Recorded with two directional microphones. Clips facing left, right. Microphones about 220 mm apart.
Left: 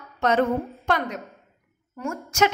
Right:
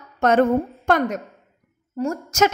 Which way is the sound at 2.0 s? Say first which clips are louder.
Right 3 dB; 40° right (ahead or behind).